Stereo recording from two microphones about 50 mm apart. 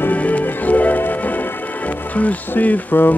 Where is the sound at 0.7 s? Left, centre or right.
Left.